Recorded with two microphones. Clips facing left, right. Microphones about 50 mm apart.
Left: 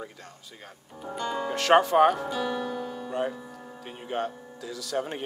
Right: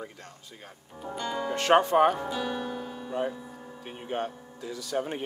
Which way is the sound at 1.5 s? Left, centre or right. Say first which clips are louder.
Left 1 dB; left.